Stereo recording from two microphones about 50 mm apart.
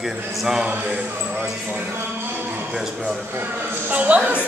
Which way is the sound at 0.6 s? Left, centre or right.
Right.